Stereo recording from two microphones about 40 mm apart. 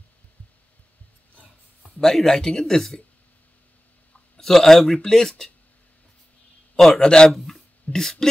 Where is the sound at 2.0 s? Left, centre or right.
Centre.